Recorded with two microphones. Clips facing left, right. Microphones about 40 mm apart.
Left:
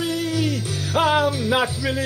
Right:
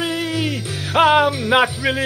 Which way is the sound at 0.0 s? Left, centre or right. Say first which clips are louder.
Right 1 dB; right.